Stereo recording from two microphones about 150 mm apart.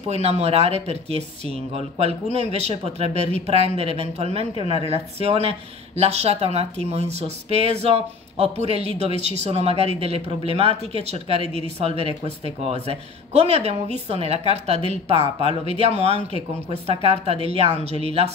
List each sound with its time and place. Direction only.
0.1 s speech: 45° right (ahead or behind)